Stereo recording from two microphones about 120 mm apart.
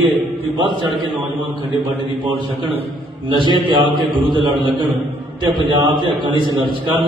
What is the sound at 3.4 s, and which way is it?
Speech, 40° right (ahead or behind).